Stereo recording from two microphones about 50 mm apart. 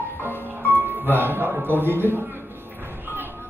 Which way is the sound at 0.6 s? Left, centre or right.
Right.